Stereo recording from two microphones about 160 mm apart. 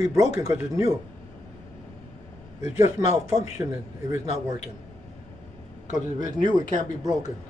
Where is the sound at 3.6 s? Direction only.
20° right (ahead or behind).